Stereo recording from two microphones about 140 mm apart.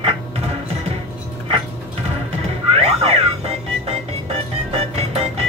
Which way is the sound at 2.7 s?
45° right (ahead or behind).